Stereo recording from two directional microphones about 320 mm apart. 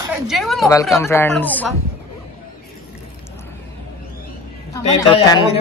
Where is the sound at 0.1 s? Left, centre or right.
Centre.